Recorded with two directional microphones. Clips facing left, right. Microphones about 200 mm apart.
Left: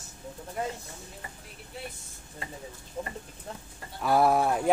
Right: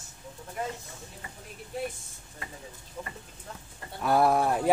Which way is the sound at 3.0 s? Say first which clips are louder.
Left 4 dB; 30° left (ahead or behind).